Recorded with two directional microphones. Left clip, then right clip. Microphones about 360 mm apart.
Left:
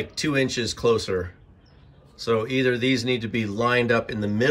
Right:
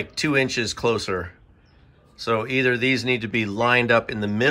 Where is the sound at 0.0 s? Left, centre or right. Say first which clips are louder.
Right 2 dB; centre.